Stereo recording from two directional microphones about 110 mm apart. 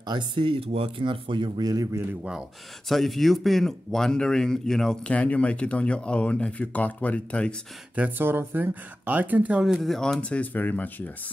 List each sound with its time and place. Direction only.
0.0 s speech: 45° right (ahead or behind)
1.7 s speech: 30° right (ahead or behind)
2.9 s speech: centre (ahead or behind)
7.9 s speech: 15° right (ahead or behind)
9.6 s speech: centre (ahead or behind); by 11.1 s 15° left (ahead or behind)